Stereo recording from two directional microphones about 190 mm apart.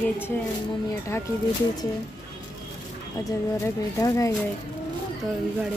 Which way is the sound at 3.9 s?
15° left (ahead or behind).